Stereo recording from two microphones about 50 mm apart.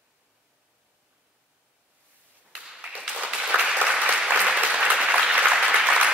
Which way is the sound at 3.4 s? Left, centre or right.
Centre.